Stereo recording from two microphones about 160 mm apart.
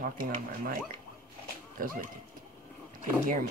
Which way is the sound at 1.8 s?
60° right (ahead or behind).